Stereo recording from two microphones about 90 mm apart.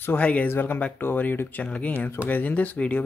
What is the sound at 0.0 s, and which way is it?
Speech, 15° left (ahead or behind).